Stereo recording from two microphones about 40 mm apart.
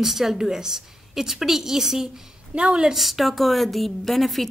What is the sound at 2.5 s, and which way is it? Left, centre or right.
Speech, right.